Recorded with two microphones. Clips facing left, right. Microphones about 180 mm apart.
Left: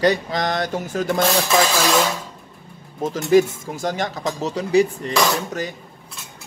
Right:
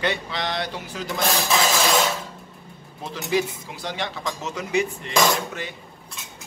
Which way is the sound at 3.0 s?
45° left (ahead or behind).